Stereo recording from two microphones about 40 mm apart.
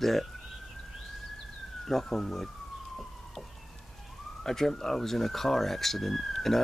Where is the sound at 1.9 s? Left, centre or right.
Centre.